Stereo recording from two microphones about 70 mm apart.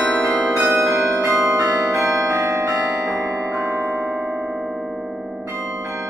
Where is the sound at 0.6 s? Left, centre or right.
Right.